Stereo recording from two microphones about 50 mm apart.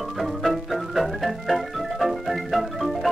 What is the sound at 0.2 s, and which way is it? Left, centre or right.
Organ, centre.